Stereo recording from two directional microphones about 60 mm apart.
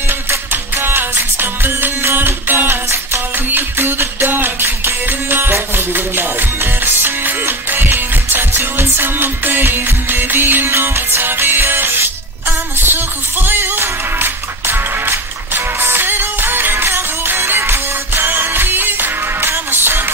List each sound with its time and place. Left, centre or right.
0.5 s music: right